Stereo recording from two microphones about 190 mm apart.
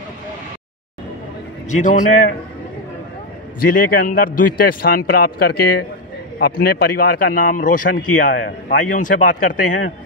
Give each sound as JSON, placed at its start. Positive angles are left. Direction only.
{"t": 1.7, "sound": "a man's voice", "side_deg": 40}
{"t": 3.6, "sound": "a man's voice", "side_deg": 50}